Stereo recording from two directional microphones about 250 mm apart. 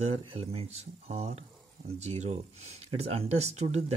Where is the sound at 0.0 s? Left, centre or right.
Right.